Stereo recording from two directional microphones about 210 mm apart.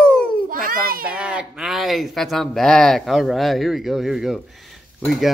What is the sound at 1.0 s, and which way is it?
Speech, 5° right (ahead or behind).